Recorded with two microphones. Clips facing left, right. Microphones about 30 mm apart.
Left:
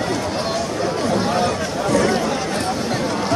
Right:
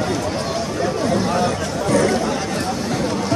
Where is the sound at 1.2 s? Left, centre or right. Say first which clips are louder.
Even; centre.